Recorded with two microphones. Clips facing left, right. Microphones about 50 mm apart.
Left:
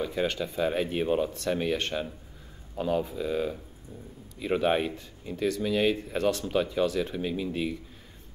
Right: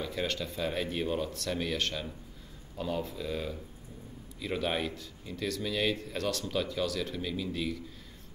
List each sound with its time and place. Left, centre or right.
0.0 s speech: centre
4.4 s speech: left